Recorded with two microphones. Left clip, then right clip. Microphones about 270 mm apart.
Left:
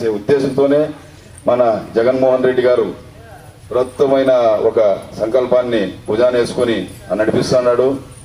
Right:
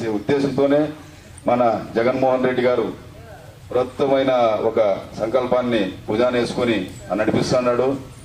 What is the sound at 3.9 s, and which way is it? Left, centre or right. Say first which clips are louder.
A man's voice: left 6 dB; left.